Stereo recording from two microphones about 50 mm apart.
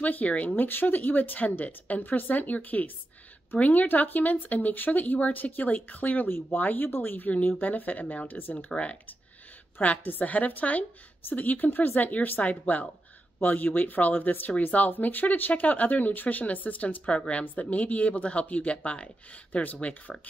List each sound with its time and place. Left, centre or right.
0.0 s a woman's voice: left
6.2 s speech: left
6.6 s a woman's voice: left